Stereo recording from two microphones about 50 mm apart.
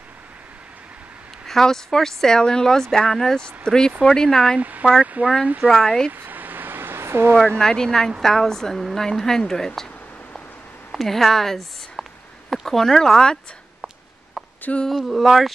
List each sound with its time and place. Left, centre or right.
1.5 s speech: centre
4.6 s speech: right
5.7 s speech: centre
6.2 s a sound: right
7.5 s speech: centre
10.9 s a sound: centre
12.6 s speech: centre
15.0 s speech: centre